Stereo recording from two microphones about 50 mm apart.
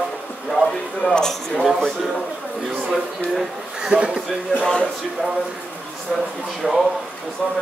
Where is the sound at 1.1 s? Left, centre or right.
Centre.